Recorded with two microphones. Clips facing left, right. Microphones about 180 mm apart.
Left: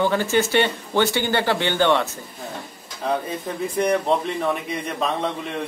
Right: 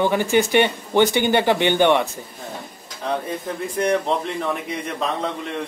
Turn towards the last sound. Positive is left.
turn(degrees=5)  # may be behind; listen again after turning